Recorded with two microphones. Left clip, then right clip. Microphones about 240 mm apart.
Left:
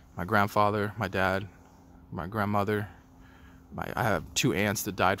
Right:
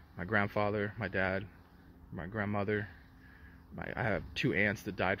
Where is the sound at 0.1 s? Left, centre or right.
Left.